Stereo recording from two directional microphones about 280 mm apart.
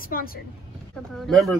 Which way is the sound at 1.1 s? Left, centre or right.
Centre.